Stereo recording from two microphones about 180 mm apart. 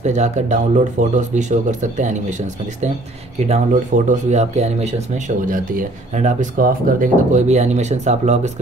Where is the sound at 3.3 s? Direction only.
40° right (ahead or behind).